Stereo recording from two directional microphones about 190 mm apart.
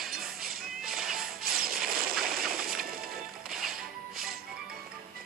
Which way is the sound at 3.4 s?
Centre (ahead or behind).